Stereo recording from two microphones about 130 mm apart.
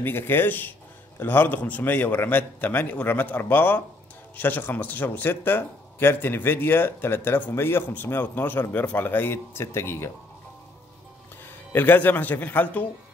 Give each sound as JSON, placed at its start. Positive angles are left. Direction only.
{"t": 0.0, "sound": "speech", "side_deg": 15}
{"t": 11.7, "sound": "speech", "side_deg": 15}